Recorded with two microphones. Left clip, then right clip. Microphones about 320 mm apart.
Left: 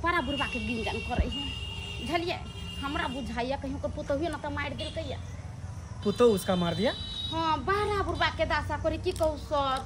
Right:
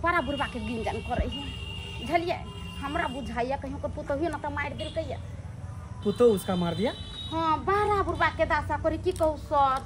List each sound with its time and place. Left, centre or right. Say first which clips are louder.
0.0 s speech: right 2 dB; centre
6.0 s speech: right 1 dB; centre
7.3 s speech: right 3 dB; centre